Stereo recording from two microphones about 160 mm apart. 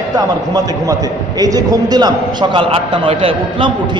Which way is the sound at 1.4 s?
25° right (ahead or behind).